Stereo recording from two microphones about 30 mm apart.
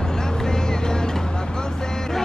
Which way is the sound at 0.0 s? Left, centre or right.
Left.